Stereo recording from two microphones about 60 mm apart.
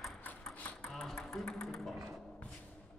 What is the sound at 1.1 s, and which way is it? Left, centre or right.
Music, centre.